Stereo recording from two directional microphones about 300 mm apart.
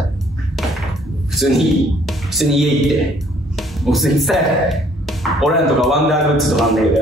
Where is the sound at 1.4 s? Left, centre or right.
Centre.